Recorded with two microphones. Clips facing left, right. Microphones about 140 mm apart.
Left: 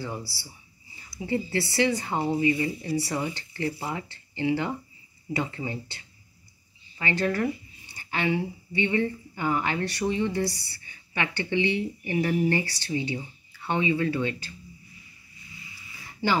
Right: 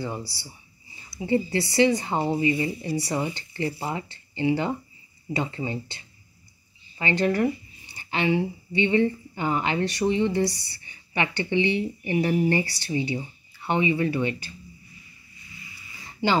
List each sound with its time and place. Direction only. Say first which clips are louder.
1.1 s speech: right 4 dB; 20° right (ahead or behind)
7.0 s speech: right 3 dB; 20° right (ahead or behind)
16.2 s speech: right 2 dB; 20° right (ahead or behind)